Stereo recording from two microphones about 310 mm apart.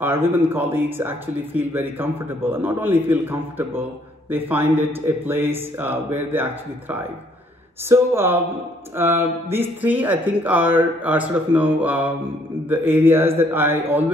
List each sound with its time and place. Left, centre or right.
0.0 s speech: centre